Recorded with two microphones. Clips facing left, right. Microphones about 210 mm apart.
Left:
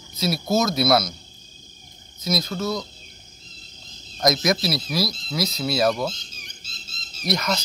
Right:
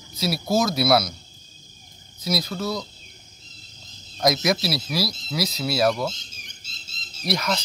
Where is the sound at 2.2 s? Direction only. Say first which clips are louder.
Left 1 dB; 10° right (ahead or behind).